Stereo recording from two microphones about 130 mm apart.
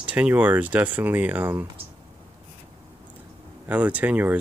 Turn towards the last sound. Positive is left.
turn(degrees=-10)  # may be behind; listen again after turning